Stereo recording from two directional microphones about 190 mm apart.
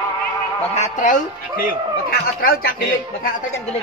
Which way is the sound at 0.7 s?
40° left (ahead or behind).